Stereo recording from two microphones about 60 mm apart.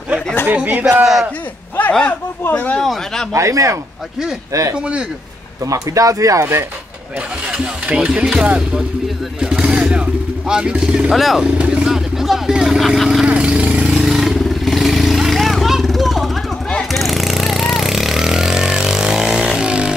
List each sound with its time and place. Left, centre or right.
0.7 s speech: right
2.5 s speech: left
2.8 s speech: centre
3.3 s speech: right
4.7 s speech: centre
5.7 s speech: right
7.2 s speech: centre
11.1 s speech: centre
11.5 s vehicle: centre
13.3 s a sound: centre
13.9 s vehicle: centre